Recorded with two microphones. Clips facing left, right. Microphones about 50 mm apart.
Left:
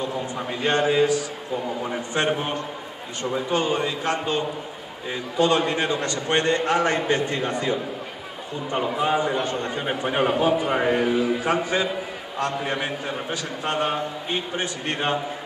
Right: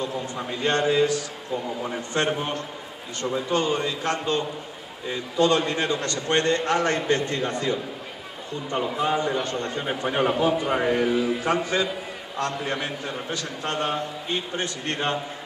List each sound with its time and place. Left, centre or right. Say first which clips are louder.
0.0 s a man's voice: left 2 dB; centre